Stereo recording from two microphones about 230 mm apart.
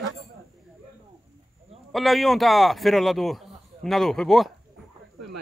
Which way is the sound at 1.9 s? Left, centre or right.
Centre.